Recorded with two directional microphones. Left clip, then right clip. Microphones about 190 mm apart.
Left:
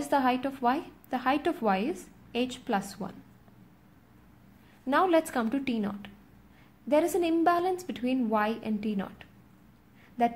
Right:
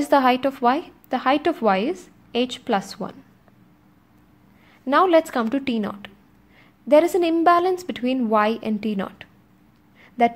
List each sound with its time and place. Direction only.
0.0 s a woman's voice: 30° right (ahead or behind)
4.8 s a woman's voice: 25° right (ahead or behind)